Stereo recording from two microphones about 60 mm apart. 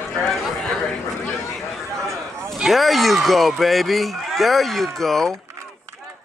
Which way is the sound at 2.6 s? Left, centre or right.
Centre.